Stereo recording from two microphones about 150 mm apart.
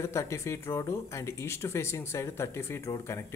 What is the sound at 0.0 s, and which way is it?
A man's voice, 20° left (ahead or behind).